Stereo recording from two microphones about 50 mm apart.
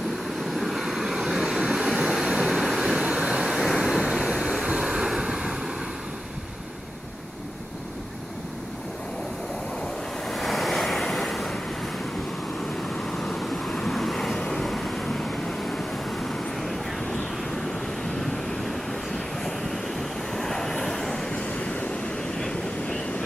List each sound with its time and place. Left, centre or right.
0.4 s vehicle: centre
3.0 s vehicle: right
3.4 s vehicle: centre
4.2 s vehicle: centre
10.2 s waves: centre
12.9 s vehicle: centre
21.4 s vehicle: left